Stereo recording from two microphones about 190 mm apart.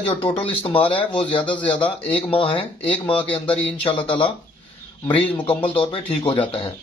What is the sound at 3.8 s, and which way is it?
Speech, 30° left (ahead or behind).